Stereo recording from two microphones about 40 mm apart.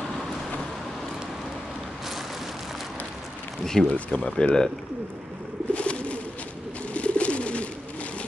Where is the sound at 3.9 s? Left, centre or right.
Left.